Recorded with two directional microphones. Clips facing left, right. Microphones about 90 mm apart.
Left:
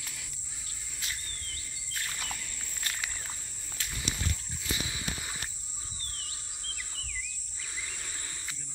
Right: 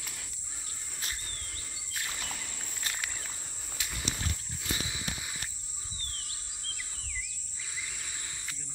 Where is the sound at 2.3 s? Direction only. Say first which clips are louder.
Right 1 dB; 55° right (ahead or behind).